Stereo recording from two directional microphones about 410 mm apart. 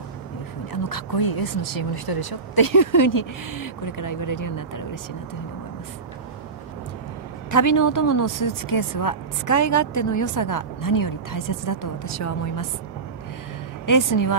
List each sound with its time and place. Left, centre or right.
0.8 s a woman's voice: left
7.5 s a woman's voice: left
13.8 s a woman's voice: left